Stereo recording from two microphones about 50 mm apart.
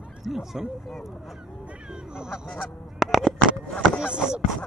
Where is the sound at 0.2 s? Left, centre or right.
Centre.